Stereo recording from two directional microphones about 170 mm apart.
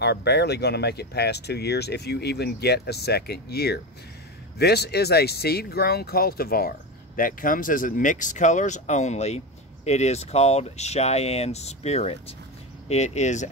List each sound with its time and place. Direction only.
0.0 s speech: 75° left (ahead or behind); by 13.5 s 45° left (ahead or behind)